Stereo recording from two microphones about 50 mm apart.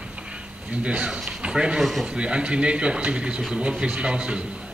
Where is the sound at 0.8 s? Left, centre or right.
Right.